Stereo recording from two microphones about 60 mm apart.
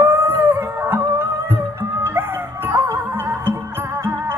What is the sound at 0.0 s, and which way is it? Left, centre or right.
Music, right.